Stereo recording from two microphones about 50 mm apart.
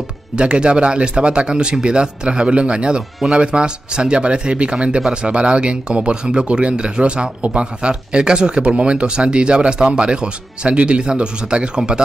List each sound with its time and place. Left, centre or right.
0.4 s speech: centre